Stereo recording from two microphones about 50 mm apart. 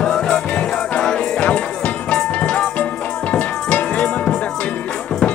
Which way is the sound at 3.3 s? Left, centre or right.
Left.